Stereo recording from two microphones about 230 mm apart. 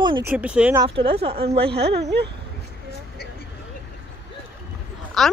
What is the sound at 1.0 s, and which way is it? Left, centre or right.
Speech, right.